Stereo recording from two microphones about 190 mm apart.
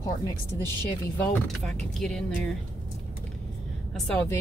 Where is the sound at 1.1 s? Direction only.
10° left (ahead or behind).